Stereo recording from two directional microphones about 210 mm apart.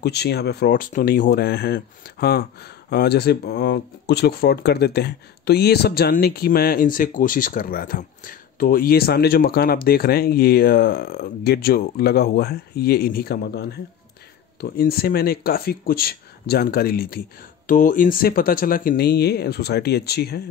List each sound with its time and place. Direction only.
0.0 s speech: 50° left (ahead or behind)